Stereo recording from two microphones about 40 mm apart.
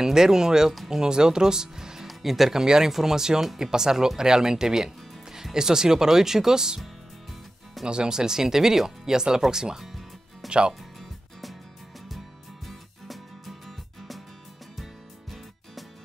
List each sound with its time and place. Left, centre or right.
0.0 s speech: centre
7.8 s speech: centre
9.8 s music: centre
12.6 s music: centre